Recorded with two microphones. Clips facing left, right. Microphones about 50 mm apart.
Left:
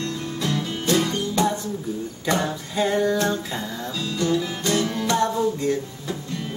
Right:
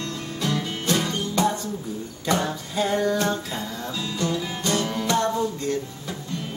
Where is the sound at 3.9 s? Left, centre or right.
Right.